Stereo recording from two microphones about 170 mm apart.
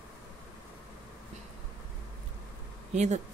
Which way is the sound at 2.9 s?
45° right (ahead or behind).